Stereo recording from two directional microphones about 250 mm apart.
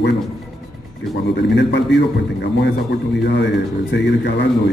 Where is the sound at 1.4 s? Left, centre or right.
Left.